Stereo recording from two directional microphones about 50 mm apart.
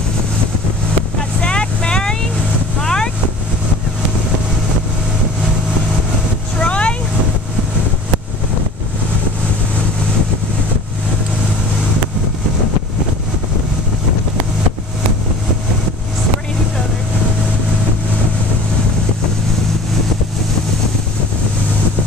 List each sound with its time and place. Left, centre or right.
1.4 s vehicle: centre
6.6 s vehicle: left